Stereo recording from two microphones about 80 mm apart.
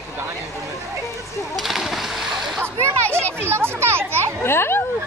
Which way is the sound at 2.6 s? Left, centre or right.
Right.